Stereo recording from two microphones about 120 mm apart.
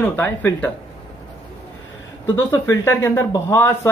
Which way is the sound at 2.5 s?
20° left (ahead or behind).